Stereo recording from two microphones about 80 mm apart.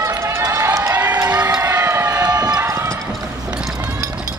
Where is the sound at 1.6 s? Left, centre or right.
Right.